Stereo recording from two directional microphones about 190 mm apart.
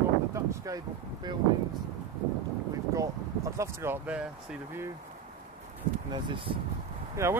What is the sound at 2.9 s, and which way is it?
Speech, 15° right (ahead or behind).